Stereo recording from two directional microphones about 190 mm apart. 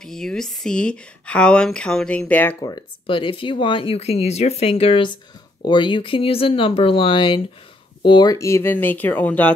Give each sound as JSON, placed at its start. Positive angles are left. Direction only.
{"t": 0.0, "sound": "a woman's voice", "side_deg": 5}
{"t": 2.6, "sound": "speech", "side_deg": 25}